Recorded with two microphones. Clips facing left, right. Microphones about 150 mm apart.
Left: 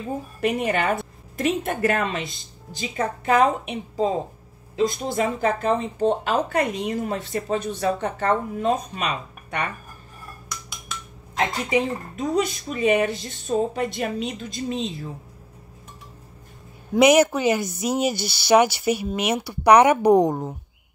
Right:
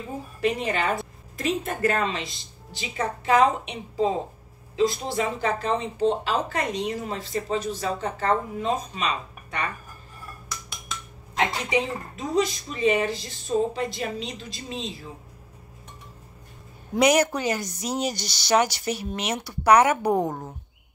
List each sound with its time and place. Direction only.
0.4 s a woman's voice: 55° left (ahead or behind)
11.3 s speech: 50° left (ahead or behind)
16.9 s speech: 10° left (ahead or behind)